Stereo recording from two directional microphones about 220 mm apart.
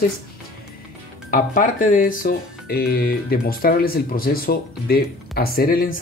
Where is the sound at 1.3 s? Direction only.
35° left (ahead or behind).